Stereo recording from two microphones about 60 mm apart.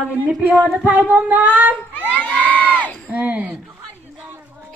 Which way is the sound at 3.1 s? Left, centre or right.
Right.